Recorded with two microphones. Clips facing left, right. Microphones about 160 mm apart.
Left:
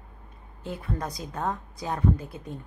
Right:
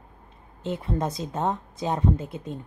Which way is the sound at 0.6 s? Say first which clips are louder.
Right 5 dB; 25° right (ahead or behind).